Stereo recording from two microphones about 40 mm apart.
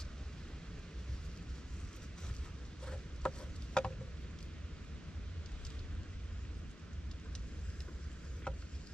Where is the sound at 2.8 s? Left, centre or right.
Left.